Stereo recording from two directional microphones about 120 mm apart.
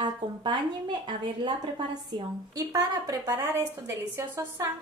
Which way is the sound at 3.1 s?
20° right (ahead or behind).